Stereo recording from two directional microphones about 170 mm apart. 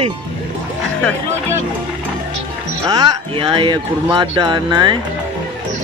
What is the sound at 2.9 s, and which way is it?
Speech, 25° right (ahead or behind).